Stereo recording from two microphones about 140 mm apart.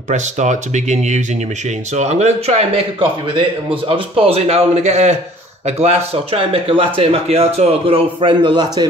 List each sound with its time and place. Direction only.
0.1 s a man's voice: 60° right (ahead or behind); by 8.6 s 35° right (ahead or behind)